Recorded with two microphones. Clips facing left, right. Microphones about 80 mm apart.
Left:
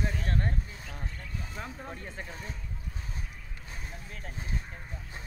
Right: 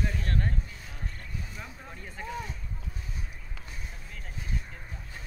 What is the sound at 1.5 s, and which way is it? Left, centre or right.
Speech, left.